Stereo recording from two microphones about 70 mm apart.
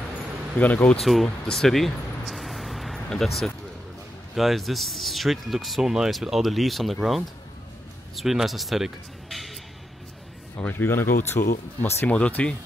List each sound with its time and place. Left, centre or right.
0.6 s speech: left
1.0 s a sound: centre
4.4 s speech: centre
10.6 s speech: left
12.1 s speech: centre